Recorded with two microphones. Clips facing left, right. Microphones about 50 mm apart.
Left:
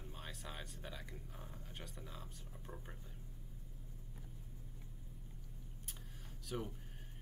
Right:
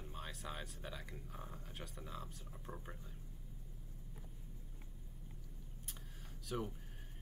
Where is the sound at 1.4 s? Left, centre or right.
Centre.